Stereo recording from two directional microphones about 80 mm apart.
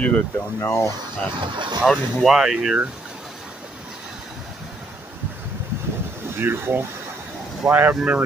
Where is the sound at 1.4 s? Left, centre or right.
Right.